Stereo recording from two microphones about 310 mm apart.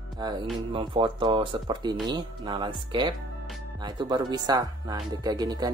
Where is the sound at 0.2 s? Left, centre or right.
Centre.